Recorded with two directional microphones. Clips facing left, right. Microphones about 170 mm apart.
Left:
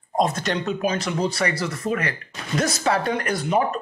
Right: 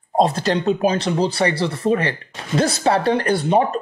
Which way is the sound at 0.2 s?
30° right (ahead or behind).